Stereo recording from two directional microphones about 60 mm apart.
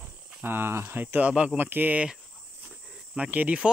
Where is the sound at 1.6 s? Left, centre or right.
Right.